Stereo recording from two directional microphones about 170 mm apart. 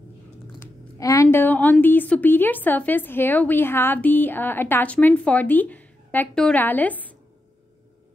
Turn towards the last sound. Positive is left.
turn(degrees=10)  # may be behind; listen again after turning